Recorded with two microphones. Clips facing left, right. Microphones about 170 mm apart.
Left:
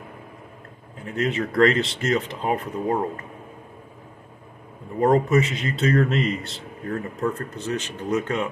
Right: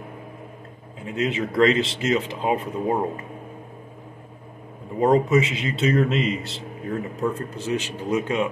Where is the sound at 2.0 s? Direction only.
15° right (ahead or behind).